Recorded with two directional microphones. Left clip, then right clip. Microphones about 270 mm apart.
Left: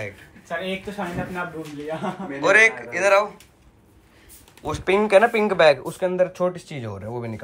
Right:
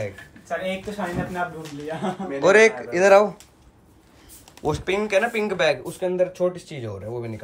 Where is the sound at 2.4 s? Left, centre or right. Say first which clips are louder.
Even; centre.